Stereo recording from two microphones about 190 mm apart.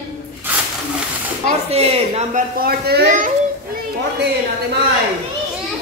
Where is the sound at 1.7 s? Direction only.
30° right (ahead or behind).